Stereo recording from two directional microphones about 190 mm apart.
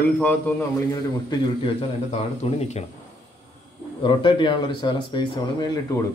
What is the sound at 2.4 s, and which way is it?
Speech, 30° left (ahead or behind).